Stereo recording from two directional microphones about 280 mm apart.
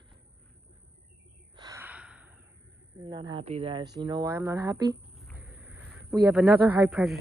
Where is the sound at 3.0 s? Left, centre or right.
Centre.